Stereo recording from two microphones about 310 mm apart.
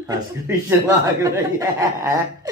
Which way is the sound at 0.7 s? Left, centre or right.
Centre.